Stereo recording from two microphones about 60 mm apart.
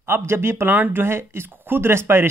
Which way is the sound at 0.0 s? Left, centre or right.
Right.